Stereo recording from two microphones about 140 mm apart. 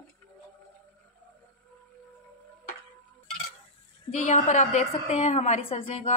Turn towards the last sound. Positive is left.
turn(degrees=45)  # may be behind; listen again after turning